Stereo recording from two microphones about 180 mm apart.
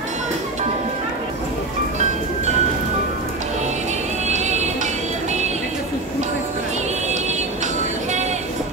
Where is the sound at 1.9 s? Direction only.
40° right (ahead or behind).